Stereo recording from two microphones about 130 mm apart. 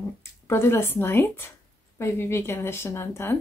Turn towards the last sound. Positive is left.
turn(degrees=20)  # may be behind; listen again after turning